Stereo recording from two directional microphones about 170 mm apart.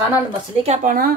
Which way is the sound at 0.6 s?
45° right (ahead or behind).